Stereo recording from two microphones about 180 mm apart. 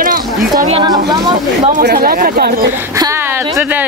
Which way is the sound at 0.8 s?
20° right (ahead or behind).